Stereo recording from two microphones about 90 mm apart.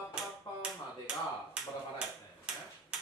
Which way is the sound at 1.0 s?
10° right (ahead or behind).